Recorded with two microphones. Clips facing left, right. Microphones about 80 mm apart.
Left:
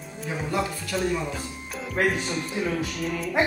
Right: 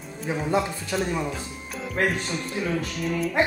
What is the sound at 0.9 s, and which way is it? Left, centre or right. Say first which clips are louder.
Speech: even; right.